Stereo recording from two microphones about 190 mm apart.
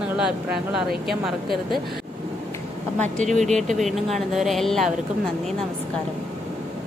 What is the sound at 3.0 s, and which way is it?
Speech, 40° right (ahead or behind).